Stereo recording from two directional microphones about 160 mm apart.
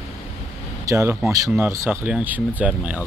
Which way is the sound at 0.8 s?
20° right (ahead or behind).